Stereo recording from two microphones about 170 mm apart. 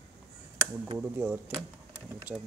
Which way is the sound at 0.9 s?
10° right (ahead or behind).